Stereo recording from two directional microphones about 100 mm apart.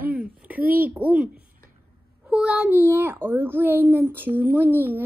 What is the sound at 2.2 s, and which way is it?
A child's voice, 10° right (ahead or behind).